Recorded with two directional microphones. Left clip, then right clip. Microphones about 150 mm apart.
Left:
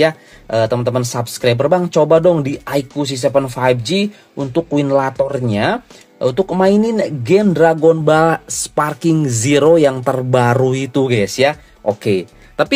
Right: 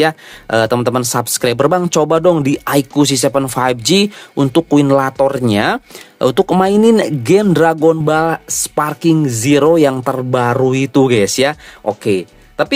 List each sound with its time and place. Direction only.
0.0 s speech: 40° right (ahead or behind)
8.1 s speech: 15° right (ahead or behind)
9.8 s speech: 35° right (ahead or behind)
12.0 s speech: 10° right (ahead or behind)